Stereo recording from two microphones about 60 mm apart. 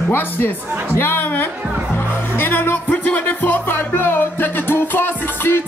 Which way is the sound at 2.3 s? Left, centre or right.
Left.